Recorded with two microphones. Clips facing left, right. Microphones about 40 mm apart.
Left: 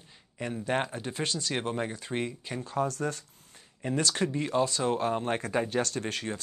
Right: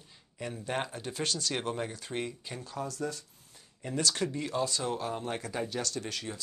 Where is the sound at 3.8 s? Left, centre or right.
Left.